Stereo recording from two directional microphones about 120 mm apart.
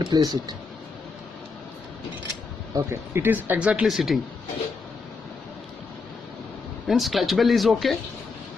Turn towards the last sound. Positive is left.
turn(degrees=0)  # may be behind; listen again after turning